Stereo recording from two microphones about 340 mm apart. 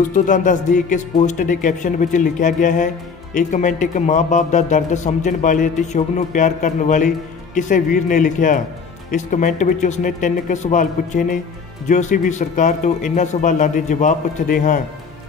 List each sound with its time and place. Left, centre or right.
0.1 s a man's voice: left